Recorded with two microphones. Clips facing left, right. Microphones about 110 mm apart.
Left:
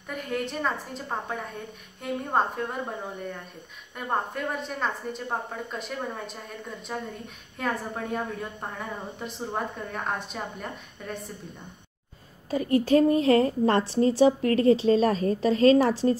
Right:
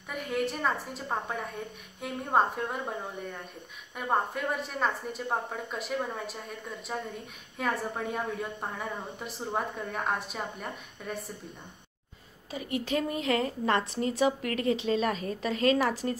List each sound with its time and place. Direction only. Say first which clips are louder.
0.1 s a woman's voice: even; 5° right (ahead or behind)
3.9 s a woman's voice: even; 5° right (ahead or behind)
12.4 s a woman's voice: left 10 dB; 40° left (ahead or behind)